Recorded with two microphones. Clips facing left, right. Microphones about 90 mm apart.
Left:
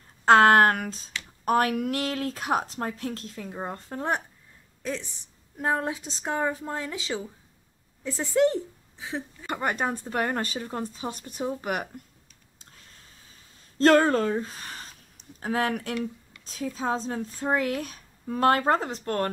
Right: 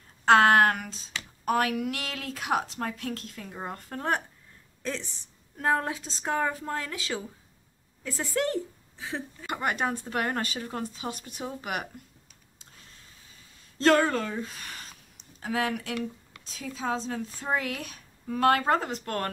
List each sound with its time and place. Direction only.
0.2 s a sound: 40° left (ahead or behind)
1.4 s speech: 40° left (ahead or behind)
3.1 s a woman's voice: 25° left (ahead or behind)
5.6 s speech: 20° left (ahead or behind)
9.5 s speech: 35° left (ahead or behind)
13.7 s a woman's voice: 40° left (ahead or behind)